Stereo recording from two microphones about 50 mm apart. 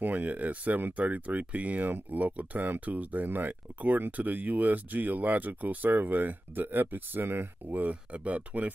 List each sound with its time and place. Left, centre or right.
0.0 s speech: right
7.8 s speech: right